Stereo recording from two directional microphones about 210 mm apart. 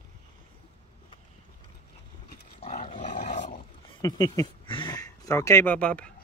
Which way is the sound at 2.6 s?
30° left (ahead or behind).